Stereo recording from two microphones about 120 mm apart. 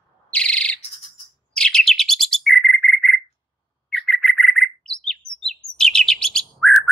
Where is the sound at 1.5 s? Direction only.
5° left (ahead or behind).